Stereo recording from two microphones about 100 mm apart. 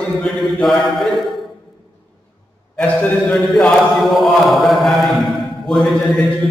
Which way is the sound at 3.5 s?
Centre (ahead or behind).